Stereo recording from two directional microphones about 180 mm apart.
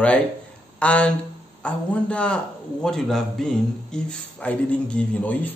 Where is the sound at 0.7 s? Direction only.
5° left (ahead or behind).